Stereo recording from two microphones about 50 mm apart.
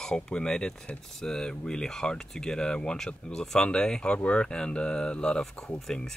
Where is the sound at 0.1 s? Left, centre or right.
Centre.